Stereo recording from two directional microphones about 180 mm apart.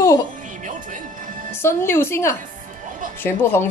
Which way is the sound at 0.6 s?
45° right (ahead or behind).